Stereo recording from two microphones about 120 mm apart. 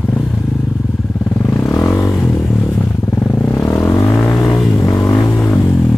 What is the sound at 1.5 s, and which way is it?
Vehicle, 20° left (ahead or behind).